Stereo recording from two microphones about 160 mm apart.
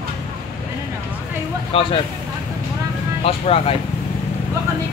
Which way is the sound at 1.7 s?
35° left (ahead or behind).